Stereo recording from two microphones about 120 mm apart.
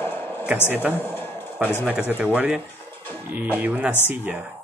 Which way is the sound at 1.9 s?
15° right (ahead or behind).